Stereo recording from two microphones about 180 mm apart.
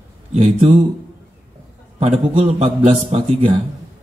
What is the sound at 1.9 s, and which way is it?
A man's voice, 35° right (ahead or behind).